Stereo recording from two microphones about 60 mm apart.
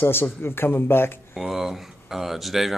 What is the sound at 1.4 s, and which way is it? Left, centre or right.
Speech, centre.